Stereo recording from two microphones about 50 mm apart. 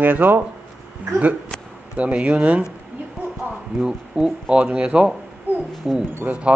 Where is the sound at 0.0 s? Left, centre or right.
Right.